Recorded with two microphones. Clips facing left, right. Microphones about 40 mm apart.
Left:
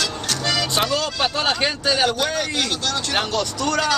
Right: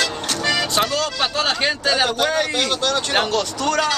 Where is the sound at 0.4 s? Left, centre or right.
Right.